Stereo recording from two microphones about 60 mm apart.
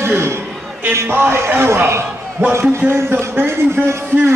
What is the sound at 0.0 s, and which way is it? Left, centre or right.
A man's voice, right.